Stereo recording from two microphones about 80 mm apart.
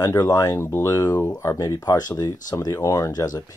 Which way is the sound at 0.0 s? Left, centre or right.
Left.